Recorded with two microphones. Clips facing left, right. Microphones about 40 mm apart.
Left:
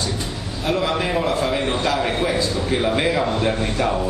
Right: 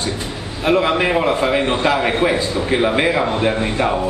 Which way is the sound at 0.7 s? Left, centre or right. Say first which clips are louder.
Right 6 dB; right.